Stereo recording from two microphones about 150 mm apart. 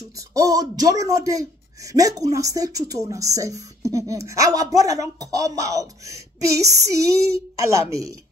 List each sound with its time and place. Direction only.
0.3 s speech: 25° right (ahead or behind)